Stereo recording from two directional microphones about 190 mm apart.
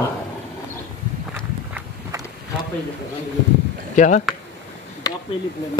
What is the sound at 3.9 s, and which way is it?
Speech, 40° left (ahead or behind).